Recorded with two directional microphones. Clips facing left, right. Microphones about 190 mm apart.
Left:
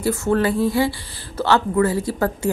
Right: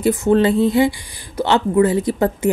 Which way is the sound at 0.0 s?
20° right (ahead or behind).